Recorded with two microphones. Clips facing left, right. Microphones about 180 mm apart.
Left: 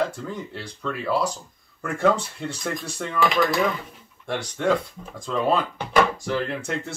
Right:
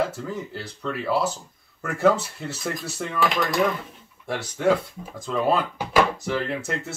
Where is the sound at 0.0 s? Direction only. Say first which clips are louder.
Even; 5° right (ahead or behind).